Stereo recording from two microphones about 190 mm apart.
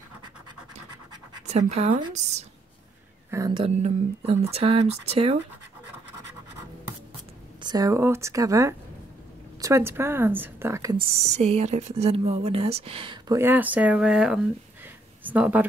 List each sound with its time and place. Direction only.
1.5 s speech: 35° right (ahead or behind)
3.3 s speech: 20° right (ahead or behind)
7.6 s a woman's voice: 20° right (ahead or behind)
11.2 s speech: 35° right (ahead or behind)
13.4 s a woman's voice: 10° right (ahead or behind)